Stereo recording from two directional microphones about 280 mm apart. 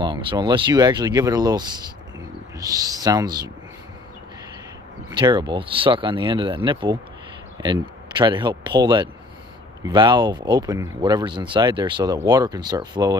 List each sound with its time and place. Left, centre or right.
0.0 s speech: centre
5.2 s speech: centre